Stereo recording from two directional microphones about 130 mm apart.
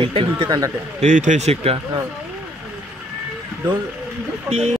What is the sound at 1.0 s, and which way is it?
Speech, 65° right (ahead or behind).